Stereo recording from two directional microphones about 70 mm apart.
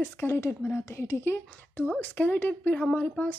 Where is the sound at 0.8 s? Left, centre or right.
Left.